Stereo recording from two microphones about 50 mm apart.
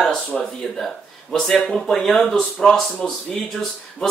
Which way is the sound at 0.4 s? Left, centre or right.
Centre.